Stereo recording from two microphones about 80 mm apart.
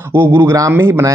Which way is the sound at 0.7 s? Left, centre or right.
Right.